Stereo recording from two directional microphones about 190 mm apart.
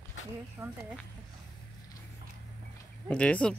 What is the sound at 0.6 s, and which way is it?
Speech, 20° right (ahead or behind).